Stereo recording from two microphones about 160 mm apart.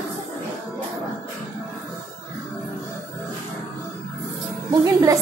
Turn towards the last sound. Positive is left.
turn(degrees=-20)  # may be behind; listen again after turning